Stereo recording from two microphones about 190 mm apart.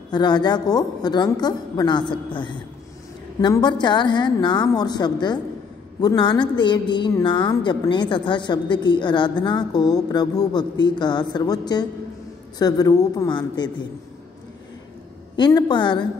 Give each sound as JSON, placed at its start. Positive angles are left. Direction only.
{"t": 0.1, "sound": "a woman's voice", "side_deg": 20}
{"t": 15.3, "sound": "a woman's voice", "side_deg": 25}